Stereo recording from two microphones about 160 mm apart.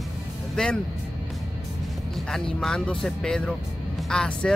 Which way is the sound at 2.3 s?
5° left (ahead or behind).